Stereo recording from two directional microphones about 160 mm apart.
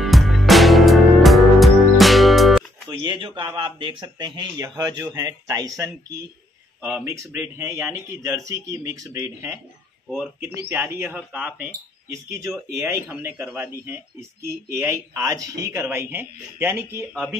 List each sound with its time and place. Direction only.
0.0 s music: centre (ahead or behind)
2.9 s speech: 30° right (ahead or behind)
6.8 s speech: 5° right (ahead or behind)
7.1 s speech: 15° right (ahead or behind)
10.7 s speech: 15° right (ahead or behind)
12.7 s speech: 15° right (ahead or behind)